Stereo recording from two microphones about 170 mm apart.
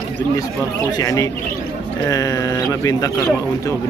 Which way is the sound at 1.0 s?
20° left (ahead or behind).